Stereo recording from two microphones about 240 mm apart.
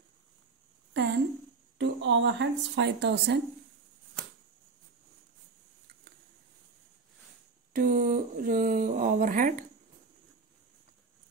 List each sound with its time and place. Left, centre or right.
1.8 s speech: right
7.7 s speech: right